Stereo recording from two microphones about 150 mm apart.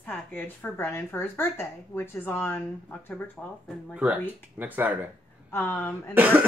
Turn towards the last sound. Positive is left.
turn(degrees=-10)  # may be behind; listen again after turning